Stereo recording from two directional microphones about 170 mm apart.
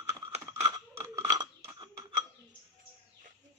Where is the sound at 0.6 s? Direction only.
20° right (ahead or behind).